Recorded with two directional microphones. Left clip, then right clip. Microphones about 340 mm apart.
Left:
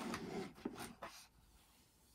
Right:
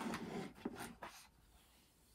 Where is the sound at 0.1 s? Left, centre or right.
Centre.